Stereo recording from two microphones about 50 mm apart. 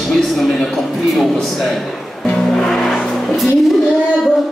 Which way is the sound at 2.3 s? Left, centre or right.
Centre.